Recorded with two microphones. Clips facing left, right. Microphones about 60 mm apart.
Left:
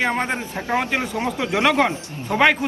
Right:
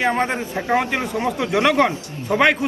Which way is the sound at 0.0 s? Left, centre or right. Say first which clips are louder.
Right 2 dB; centre.